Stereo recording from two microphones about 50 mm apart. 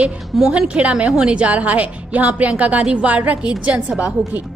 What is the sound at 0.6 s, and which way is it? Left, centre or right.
A woman's voice, right.